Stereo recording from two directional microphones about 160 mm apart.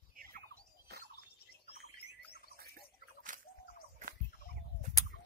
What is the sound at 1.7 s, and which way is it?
Chirp, 40° left (ahead or behind).